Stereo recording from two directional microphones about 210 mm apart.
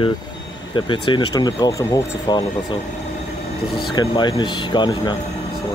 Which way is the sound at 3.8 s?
20° left (ahead or behind).